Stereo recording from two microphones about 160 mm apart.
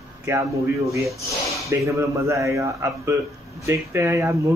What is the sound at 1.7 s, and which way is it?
Speech, 20° right (ahead or behind).